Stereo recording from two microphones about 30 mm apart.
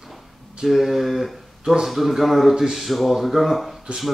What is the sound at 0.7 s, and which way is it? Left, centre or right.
Speech, centre.